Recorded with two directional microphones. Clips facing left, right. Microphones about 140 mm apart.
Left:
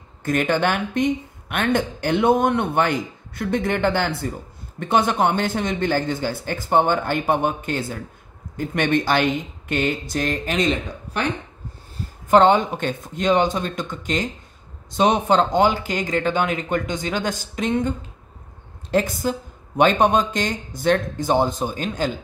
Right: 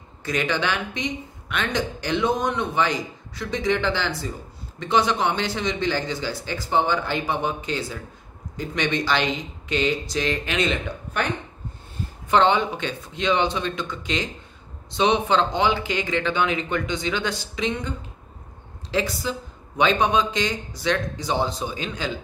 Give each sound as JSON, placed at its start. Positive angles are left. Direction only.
{"t": 0.2, "sound": "speech", "side_deg": 50}
{"t": 12.3, "sound": "speech", "side_deg": 45}